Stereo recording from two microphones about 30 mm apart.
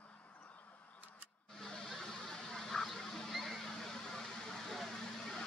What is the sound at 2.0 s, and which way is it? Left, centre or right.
Duck, centre.